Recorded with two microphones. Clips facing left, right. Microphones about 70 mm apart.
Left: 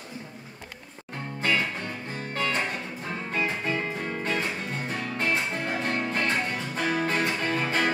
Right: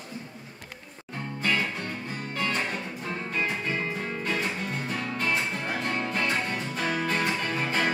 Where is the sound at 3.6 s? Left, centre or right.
Centre.